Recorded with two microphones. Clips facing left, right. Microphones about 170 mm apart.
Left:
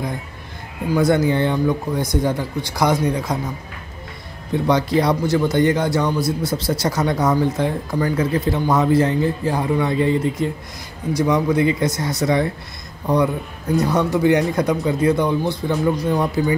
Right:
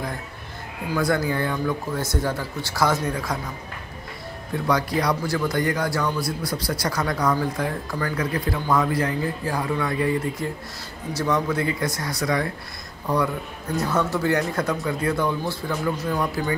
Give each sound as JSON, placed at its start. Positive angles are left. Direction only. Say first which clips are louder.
{"t": 0.9, "sound": "a man's voice", "louder": "left 6 dB", "side_deg": 20}
{"t": 4.6, "sound": "a man's voice", "louder": "left 5 dB", "side_deg": 25}